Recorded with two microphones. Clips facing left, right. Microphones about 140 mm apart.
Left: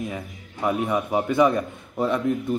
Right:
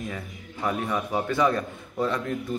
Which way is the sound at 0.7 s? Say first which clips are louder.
Left 4 dB; 15° left (ahead or behind).